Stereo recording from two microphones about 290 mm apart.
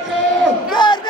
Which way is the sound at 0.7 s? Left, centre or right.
Centre.